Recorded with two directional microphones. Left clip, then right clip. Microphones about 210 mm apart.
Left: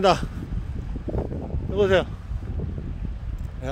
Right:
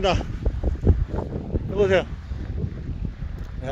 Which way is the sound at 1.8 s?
15° left (ahead or behind).